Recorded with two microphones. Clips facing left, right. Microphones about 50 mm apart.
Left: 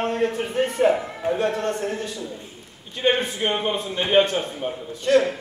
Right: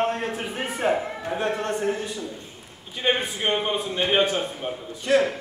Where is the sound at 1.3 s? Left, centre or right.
Centre.